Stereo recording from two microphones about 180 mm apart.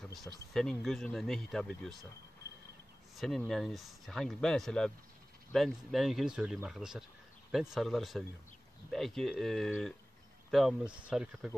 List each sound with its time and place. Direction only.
0.1 s speech: centre (ahead or behind)
3.2 s speech: centre (ahead or behind)